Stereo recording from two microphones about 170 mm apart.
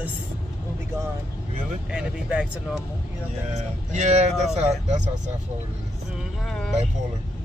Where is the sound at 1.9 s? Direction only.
5° right (ahead or behind).